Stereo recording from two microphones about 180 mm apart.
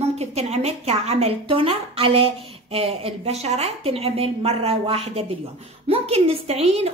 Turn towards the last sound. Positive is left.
turn(degrees=-35)  # may be behind; listen again after turning